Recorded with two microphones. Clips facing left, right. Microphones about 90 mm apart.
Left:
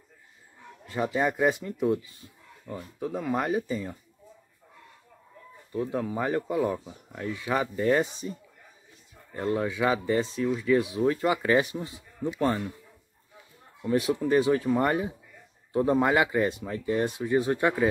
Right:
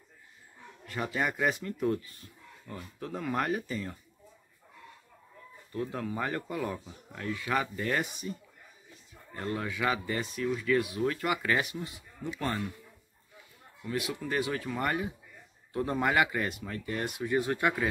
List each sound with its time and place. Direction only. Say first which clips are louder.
0.8 s speech: left 5 dB; 20° left (ahead or behind)
5.7 s speech: left 5 dB; 15° left (ahead or behind)
13.8 s speech: left 9 dB; 30° left (ahead or behind)